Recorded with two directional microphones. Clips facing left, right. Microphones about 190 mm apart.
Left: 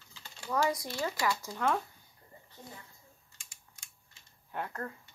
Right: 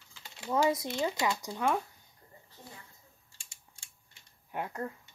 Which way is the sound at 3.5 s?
30° right (ahead or behind).